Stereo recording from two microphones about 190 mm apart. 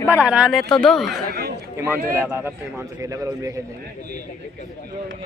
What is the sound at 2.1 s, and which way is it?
A man's voice, 10° right (ahead or behind).